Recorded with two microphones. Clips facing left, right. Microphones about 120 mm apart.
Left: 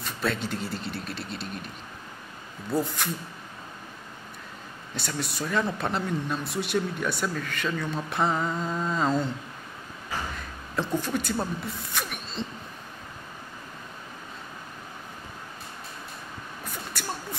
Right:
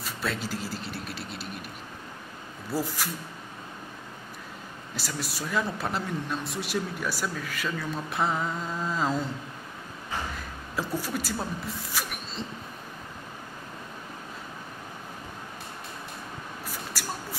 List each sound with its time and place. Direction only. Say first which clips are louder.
0.0 s speech: left 3 dB; centre (ahead or behind)
2.7 s speech: left 3 dB; 5° right (ahead or behind)
4.9 s speech: left 3 dB; centre (ahead or behind)
11.0 s speech: left 3 dB; 5° right (ahead or behind)
16.6 s a sound: left 2 dB; 5° right (ahead or behind)